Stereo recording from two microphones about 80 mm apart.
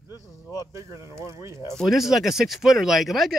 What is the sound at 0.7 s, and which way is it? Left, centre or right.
Speech, right.